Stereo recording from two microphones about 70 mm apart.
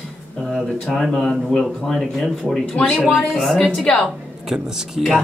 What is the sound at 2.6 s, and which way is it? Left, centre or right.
Speech, centre.